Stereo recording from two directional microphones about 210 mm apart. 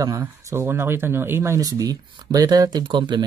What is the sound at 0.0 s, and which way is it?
Speech, 15° right (ahead or behind).